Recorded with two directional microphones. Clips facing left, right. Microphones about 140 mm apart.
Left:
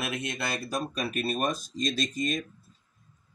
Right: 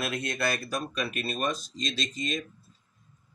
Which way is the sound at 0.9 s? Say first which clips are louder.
Left 2 dB; 40° left (ahead or behind).